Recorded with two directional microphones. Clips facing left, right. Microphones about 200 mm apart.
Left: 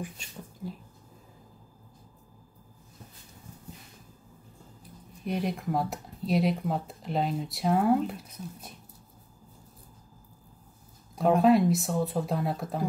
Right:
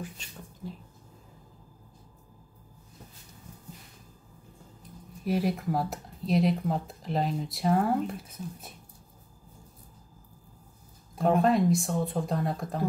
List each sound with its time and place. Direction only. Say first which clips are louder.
5.2 s speech: right 3 dB; 5° right (ahead or behind)
11.1 s speech: left 2 dB; centre (ahead or behind)